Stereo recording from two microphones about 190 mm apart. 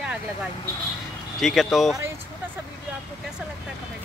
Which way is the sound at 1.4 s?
Centre (ahead or behind).